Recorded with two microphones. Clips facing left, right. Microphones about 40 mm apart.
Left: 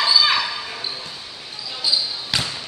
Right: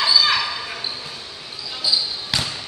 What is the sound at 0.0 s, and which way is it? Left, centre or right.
Basketball bounce, centre.